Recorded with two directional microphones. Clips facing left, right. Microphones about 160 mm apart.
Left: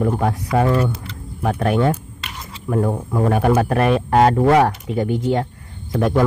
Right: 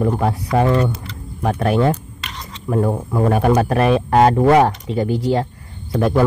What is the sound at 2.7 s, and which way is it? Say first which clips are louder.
Speech: right 1 dB; 25° right (ahead or behind).